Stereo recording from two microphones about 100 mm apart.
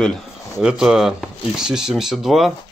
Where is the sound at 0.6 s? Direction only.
5° right (ahead or behind).